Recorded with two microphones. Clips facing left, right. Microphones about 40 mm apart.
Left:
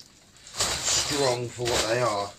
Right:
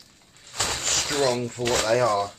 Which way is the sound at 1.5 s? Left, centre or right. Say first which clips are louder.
Right 3 dB; right.